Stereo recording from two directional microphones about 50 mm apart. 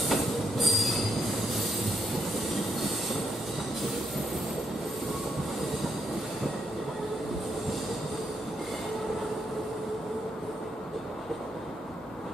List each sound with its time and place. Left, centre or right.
0.1 s train: centre